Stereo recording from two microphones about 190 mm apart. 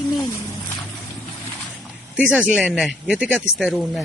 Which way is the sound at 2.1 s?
5° right (ahead or behind).